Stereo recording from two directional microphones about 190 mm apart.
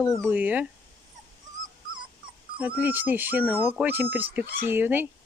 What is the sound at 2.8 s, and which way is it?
Speech, 10° right (ahead or behind).